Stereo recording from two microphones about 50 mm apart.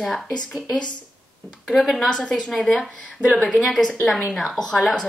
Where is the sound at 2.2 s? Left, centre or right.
Centre.